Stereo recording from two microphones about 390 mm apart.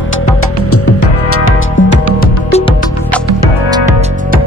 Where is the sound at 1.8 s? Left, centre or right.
Left.